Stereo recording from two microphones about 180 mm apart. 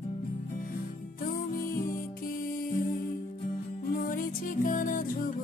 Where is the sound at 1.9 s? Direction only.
50° left (ahead or behind).